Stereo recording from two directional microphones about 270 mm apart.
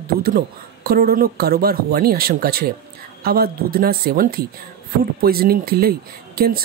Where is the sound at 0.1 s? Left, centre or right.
Right.